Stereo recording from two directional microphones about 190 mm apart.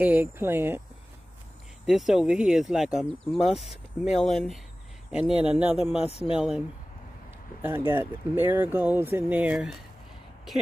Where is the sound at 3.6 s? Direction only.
35° left (ahead or behind).